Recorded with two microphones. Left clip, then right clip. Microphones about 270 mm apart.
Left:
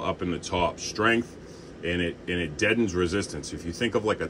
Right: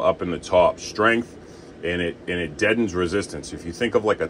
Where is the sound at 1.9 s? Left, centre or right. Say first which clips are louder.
Right 3 dB; right.